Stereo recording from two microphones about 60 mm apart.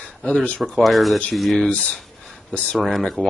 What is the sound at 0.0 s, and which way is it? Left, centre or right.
Speech, centre.